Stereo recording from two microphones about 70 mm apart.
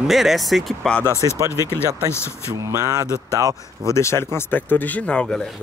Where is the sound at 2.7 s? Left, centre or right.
Right.